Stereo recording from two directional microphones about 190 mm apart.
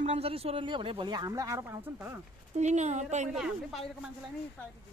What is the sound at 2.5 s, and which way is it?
Speech, 35° right (ahead or behind).